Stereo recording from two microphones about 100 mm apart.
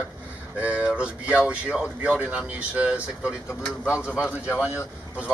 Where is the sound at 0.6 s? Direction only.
15° right (ahead or behind).